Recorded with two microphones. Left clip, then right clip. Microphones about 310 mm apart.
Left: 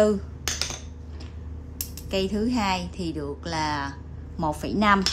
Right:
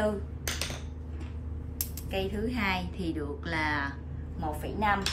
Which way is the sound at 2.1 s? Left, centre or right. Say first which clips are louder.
Left 7 dB; centre.